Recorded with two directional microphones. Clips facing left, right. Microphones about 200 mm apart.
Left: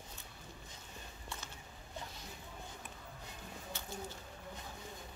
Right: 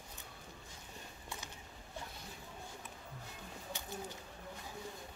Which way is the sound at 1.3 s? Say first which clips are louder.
Right 1 dB; 15° right (ahead or behind).